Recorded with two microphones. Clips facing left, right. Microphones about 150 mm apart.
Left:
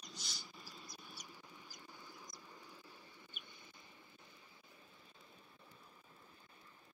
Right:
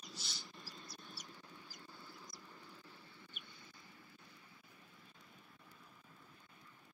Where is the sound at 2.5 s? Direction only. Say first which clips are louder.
Even; 15° left (ahead or behind).